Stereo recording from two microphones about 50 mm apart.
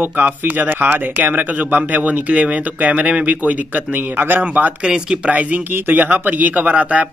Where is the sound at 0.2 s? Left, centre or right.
Right.